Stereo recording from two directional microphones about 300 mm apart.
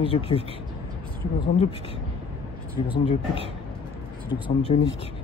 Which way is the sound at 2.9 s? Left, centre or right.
Centre.